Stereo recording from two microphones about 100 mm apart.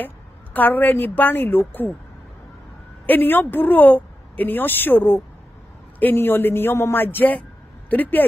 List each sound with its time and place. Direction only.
0.0 s a woman's voice: 15° left (ahead or behind)
3.1 s a woman's voice: 20° left (ahead or behind)